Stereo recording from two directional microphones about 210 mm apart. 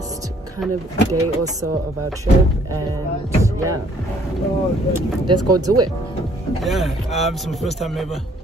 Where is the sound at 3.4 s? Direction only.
15° right (ahead or behind).